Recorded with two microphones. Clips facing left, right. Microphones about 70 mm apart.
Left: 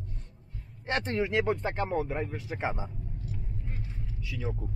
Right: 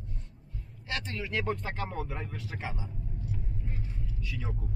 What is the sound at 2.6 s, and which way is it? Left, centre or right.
Speech, left.